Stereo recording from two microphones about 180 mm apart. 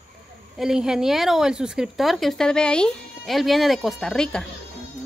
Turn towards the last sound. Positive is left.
turn(degrees=5)  # may be behind; listen again after turning